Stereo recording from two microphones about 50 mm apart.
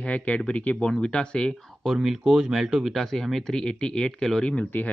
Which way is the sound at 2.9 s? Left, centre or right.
Centre.